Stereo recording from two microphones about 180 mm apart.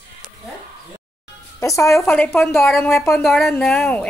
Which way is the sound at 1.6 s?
15° left (ahead or behind).